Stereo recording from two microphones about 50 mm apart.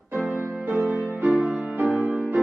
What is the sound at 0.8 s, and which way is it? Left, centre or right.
Music, right.